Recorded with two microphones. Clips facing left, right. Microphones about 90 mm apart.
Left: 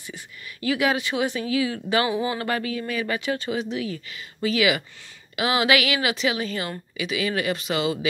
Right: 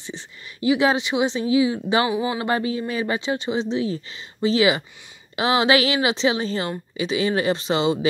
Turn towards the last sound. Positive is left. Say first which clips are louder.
# right 4 dB
turn(degrees=-30)  # may be behind; listen again after turning